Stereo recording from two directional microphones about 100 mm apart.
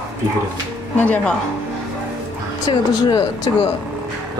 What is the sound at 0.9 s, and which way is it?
Speech, 15° left (ahead or behind).